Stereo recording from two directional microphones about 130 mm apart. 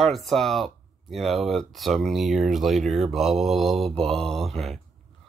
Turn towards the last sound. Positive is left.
turn(degrees=0)  # may be behind; listen again after turning